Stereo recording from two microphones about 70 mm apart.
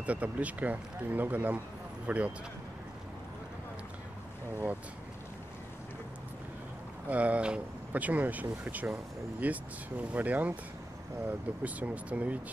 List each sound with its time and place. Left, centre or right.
0.0 s speech: centre
7.1 s speech: centre